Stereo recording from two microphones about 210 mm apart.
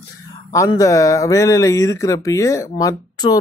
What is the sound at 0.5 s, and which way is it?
Speech, 15° left (ahead or behind).